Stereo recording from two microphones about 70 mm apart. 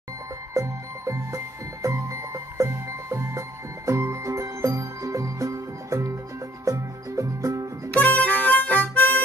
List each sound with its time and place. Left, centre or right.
0.6 s music: right
7.9 s harmonica: left